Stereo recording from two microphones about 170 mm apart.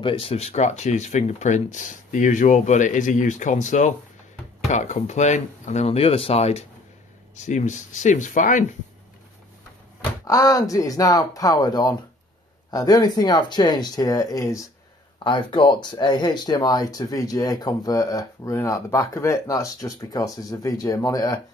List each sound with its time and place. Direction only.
0.0 s speech: 35° left (ahead or behind); by 8.6 s 50° left (ahead or behind)
10.2 s speech: 20° left (ahead or behind)